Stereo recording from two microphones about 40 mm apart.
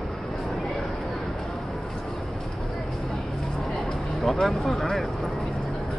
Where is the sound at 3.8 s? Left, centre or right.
Centre.